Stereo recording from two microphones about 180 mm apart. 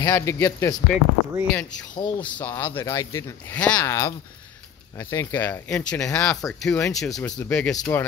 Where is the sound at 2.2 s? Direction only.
10° left (ahead or behind).